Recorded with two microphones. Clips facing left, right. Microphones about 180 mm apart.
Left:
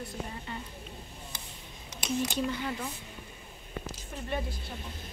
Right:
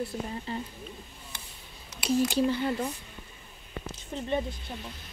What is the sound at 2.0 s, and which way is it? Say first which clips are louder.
Speech: right 6 dB; 30° right (ahead or behind).